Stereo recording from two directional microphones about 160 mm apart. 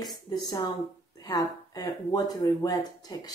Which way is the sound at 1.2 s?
25° left (ahead or behind).